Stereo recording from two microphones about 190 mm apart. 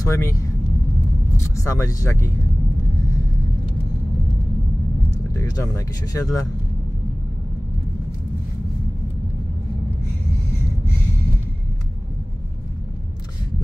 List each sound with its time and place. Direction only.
0.0 s speech: 15° left (ahead or behind)
5.3 s speech: 15° left (ahead or behind)